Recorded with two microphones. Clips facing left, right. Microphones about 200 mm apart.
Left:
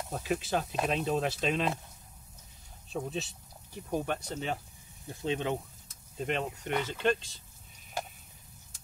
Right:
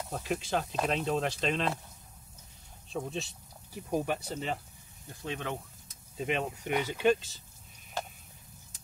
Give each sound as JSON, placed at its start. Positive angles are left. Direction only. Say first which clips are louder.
{"t": 0.1, "sound": "speech", "louder": "left 1 dB", "side_deg": 0}
{"t": 2.9, "sound": "speech", "louder": "left 1 dB", "side_deg": 0}
{"t": 5.1, "sound": "speech", "louder": "left 5 dB", "side_deg": 25}
{"t": 6.1, "sound": "speech", "louder": "right 1 dB", "side_deg": 0}